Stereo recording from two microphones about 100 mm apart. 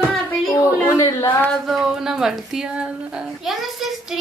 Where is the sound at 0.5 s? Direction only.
35° left (ahead or behind).